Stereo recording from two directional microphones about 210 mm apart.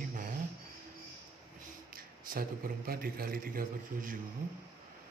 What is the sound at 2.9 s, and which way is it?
Speech, 45° right (ahead or behind).